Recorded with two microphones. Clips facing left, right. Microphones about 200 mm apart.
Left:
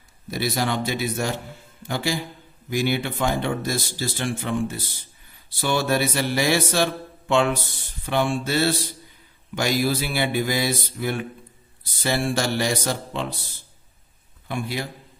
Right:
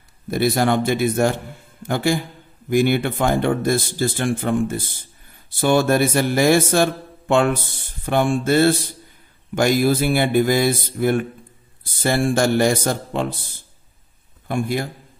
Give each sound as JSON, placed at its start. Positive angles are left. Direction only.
{"t": 0.3, "sound": "a man's voice", "side_deg": -55}